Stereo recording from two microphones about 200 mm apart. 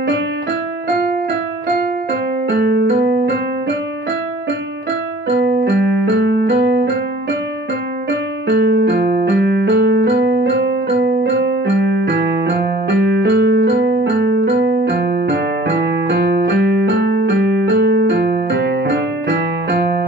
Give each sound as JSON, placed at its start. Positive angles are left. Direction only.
{"t": 2.5, "sound": "piano", "side_deg": -55}
{"t": 5.3, "sound": "piano", "side_deg": -55}
{"t": 8.1, "sound": "piano", "side_deg": -55}
{"t": 12.8, "sound": "music", "side_deg": -60}